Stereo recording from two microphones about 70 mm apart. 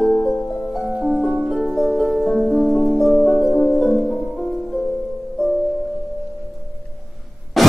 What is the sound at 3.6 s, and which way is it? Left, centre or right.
Music, centre.